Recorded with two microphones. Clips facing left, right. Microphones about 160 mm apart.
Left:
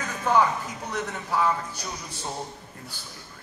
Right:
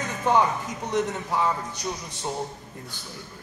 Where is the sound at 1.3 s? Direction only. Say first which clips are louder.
Left 1 dB; 20° right (ahead or behind).